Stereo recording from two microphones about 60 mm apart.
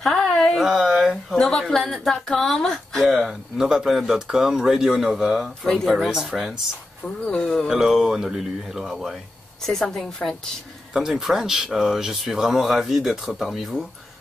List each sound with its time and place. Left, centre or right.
0.0 s a sound: centre
0.6 s a sound: centre
1.3 s a woman's voice: centre
7.2 s speech: centre
7.6 s a woman's voice: centre
9.7 s a woman's voice: centre
10.9 s a woman's voice: centre